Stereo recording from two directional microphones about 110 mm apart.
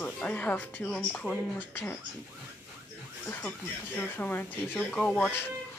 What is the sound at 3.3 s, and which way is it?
Speech, 15° left (ahead or behind).